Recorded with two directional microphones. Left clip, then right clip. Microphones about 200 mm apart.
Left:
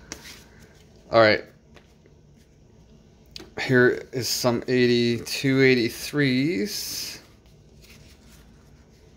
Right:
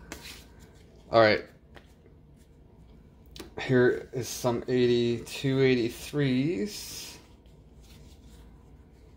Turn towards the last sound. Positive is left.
turn(degrees=20)  # may be behind; listen again after turning